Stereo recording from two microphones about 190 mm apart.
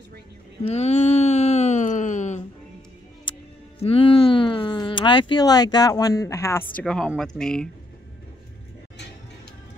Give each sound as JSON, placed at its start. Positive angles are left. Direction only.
{"t": 0.6, "sound": "a sound", "side_deg": 35}
{"t": 3.8, "sound": "speech", "side_deg": 30}
{"t": 6.8, "sound": "speech", "side_deg": 0}